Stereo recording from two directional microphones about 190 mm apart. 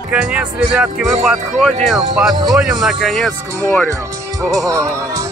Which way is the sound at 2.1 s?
Centre (ahead or behind).